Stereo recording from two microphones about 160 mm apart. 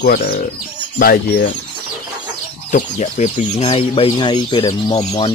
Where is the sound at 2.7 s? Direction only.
50° left (ahead or behind).